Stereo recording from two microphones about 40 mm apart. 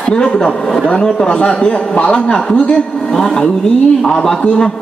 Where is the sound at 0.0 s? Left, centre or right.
Left.